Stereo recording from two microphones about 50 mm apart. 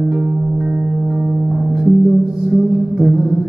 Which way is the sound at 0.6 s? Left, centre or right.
Centre.